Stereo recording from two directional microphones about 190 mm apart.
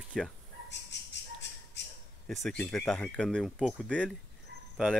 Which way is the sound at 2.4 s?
Centre (ahead or behind).